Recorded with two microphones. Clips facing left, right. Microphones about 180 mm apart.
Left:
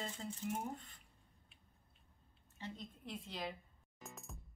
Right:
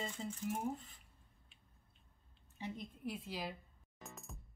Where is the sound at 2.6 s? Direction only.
10° right (ahead or behind).